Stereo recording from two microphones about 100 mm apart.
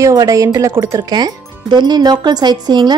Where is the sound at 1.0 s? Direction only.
45° right (ahead or behind).